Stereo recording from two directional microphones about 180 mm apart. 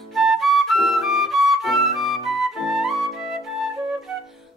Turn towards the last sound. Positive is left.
turn(degrees=0)  # may be behind; listen again after turning